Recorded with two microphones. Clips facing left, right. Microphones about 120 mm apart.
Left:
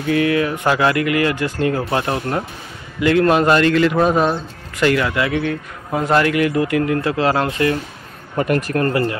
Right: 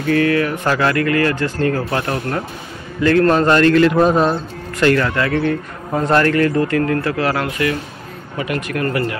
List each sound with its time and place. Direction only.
0.1 s a man's voice: 15° left (ahead or behind)
8.4 s a man's voice: 45° left (ahead or behind)